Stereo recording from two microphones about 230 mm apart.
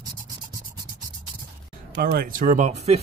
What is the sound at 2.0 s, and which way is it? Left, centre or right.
Speech, right.